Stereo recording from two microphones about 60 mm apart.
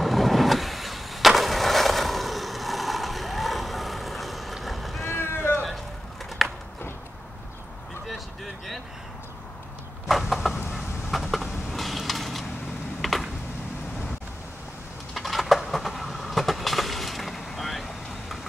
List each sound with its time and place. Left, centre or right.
0.0 s vehicle: centre
5.0 s vehicle: left
6.4 s a sound: centre
10.1 s vehicle: centre
10.7 s a sound: centre
13.0 s computer keyboard: centre
15.1 s train: centre